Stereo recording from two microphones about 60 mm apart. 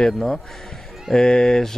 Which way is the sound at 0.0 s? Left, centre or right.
Centre.